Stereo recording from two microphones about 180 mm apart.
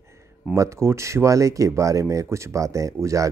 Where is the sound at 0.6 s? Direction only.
15° right (ahead or behind).